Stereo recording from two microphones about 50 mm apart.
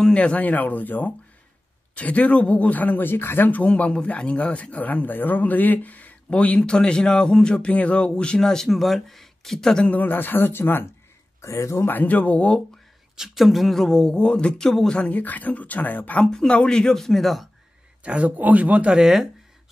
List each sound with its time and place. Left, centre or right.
0.1 s speech: left
8.6 s speech: centre
9.8 s speech: left
11.4 s speech: left
11.8 s speech: left
13.1 s speech: centre
15.0 s speech: left
16.3 s speech: centre
18.0 s speech: right
18.9 s speech: centre